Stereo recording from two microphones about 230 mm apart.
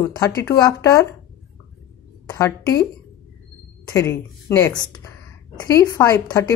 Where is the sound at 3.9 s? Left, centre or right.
Centre.